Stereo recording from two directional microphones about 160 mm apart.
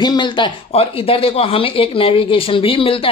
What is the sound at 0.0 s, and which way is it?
Speech, 30° left (ahead or behind).